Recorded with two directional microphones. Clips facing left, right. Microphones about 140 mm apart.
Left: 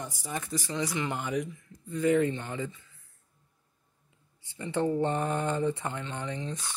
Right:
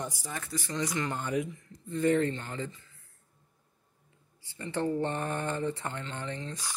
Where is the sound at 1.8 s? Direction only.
10° left (ahead or behind).